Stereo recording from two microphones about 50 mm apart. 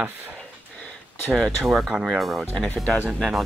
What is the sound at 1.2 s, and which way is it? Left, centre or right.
Speech, centre.